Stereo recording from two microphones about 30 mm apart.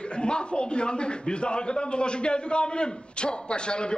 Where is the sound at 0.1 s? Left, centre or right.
Left.